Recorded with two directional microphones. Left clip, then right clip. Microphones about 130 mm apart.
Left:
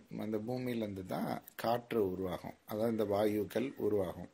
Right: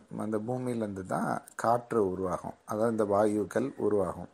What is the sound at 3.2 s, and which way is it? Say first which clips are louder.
Speech: right 6 dB; 5° left (ahead or behind).